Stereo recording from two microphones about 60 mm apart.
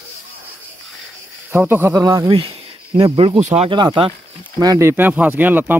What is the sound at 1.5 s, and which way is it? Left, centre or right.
Speech, right.